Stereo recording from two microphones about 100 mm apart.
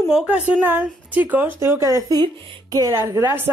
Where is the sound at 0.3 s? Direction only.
20° right (ahead or behind).